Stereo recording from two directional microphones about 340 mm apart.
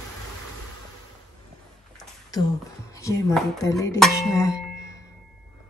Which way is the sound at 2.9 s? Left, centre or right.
Centre.